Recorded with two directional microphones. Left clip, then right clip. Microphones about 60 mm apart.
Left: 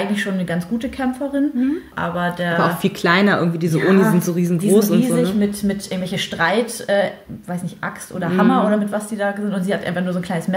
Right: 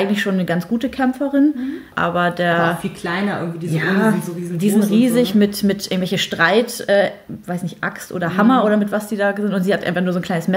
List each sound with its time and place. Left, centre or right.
0.0 s speech: right
2.8 s speech: left
3.7 s speech: right
5.0 s speech: right